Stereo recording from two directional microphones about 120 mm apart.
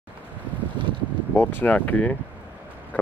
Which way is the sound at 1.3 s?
15° left (ahead or behind).